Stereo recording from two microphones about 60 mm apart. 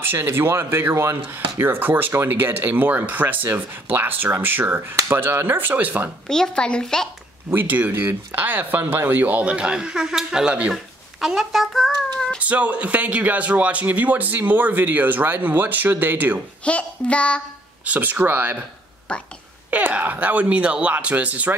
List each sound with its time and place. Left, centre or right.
0.0 s speech: right
1.3 s speech: right
6.2 s a woman's voice: centre
7.5 s speech: right
10.7 s a child's voice: centre
12.4 s speech: right
16.6 s a child's voice: left
17.8 s speech: right
19.1 s a woman's voice: centre
19.7 s speech: right